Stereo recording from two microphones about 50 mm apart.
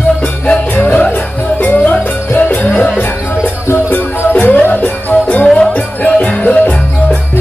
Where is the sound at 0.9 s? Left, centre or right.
Left.